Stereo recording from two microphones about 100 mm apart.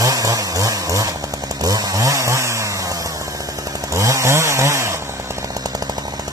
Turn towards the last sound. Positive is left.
turn(degrees=-30)  # may be behind; listen again after turning